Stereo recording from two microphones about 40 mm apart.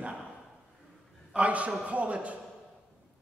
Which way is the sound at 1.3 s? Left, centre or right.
Right.